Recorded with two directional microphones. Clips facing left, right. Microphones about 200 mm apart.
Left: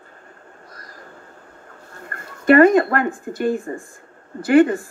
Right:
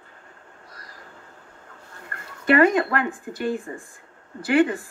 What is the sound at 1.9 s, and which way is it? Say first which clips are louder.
Speech: left 4 dB; 45° left (ahead or behind).